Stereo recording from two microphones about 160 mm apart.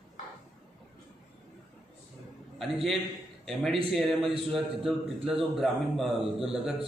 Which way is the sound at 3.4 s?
Centre (ahead or behind).